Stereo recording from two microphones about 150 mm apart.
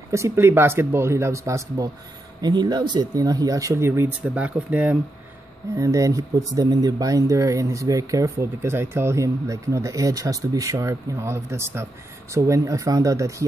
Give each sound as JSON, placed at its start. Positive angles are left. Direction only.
{"t": 0.1, "sound": "speech", "side_deg": -20}
{"t": 5.8, "sound": "speech", "side_deg": -20}